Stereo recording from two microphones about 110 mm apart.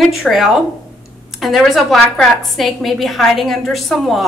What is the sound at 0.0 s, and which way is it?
A woman's voice, centre (ahead or behind).